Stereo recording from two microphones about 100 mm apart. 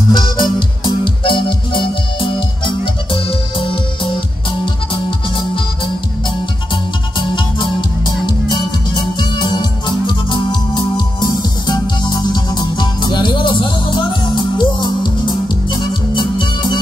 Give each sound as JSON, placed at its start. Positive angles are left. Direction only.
{"t": 0.1, "sound": "music", "side_deg": 50}
{"t": 6.7, "sound": "music", "side_deg": 50}